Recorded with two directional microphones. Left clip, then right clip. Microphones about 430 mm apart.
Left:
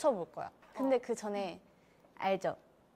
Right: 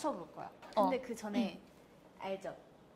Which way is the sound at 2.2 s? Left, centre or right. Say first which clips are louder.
Left 8 dB; left.